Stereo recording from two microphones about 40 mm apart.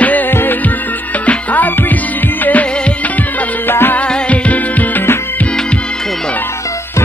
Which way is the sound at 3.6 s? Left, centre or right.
Left.